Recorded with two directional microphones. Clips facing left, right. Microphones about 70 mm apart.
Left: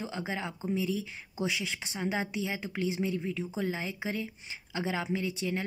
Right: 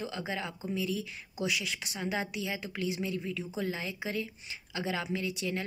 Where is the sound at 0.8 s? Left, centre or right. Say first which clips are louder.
Left 2 dB; left.